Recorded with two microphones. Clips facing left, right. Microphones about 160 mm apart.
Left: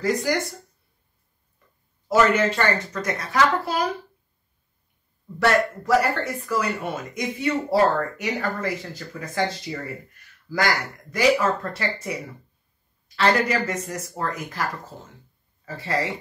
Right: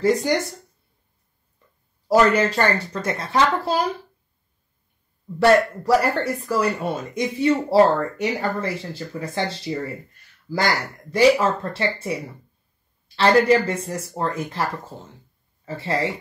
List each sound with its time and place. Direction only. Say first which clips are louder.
0.0 s speech: right 4 dB; 25° right (ahead or behind)
2.0 s speech: right 2 dB; 35° right (ahead or behind)
5.4 s speech: right 5 dB; 35° right (ahead or behind)
13.1 s speech: right 5 dB; 30° right (ahead or behind)